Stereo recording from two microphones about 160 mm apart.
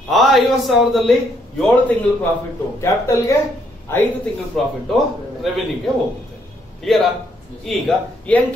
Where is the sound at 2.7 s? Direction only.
15° left (ahead or behind).